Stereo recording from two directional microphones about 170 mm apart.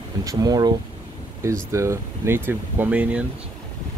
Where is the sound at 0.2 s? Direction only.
20° right (ahead or behind).